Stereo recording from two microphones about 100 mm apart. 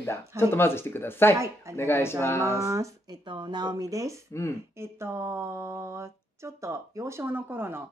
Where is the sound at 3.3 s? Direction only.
45° right (ahead or behind).